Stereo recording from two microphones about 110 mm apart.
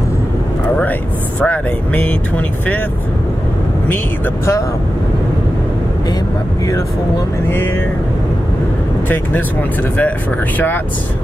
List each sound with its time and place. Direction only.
1.4 s speech: 15° left (ahead or behind)